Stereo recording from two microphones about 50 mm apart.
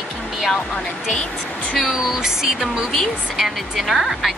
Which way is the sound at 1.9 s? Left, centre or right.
Centre.